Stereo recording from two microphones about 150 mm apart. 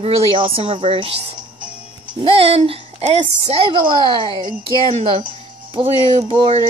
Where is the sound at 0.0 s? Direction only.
40° right (ahead or behind).